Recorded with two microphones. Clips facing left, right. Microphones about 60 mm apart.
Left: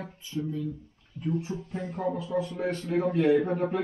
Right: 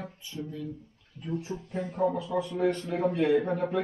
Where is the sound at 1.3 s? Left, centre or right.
Centre.